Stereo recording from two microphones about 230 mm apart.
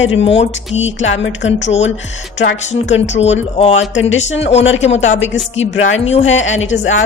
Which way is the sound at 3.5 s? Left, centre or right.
Left.